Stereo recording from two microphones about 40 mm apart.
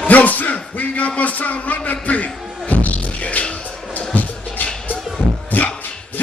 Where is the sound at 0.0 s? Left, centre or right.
Left.